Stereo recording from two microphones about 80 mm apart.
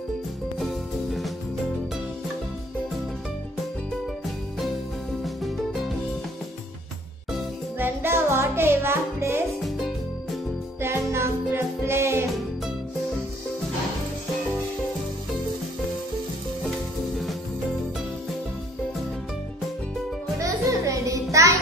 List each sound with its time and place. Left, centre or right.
5.2 s music: centre
7.8 s music: right
9.8 s music: centre
10.8 s music: right
20.3 s music: right